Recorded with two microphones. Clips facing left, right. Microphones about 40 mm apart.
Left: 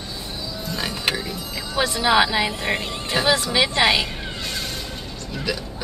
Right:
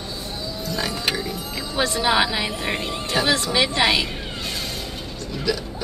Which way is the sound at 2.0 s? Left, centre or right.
Centre.